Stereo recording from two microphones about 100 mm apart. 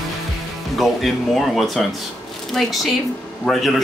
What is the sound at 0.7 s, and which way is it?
A man's voice, centre (ahead or behind).